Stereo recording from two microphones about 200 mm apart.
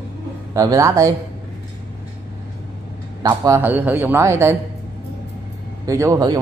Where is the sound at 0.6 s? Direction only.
15° right (ahead or behind).